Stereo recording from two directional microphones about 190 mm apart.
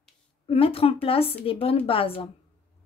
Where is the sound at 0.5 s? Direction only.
30° left (ahead or behind).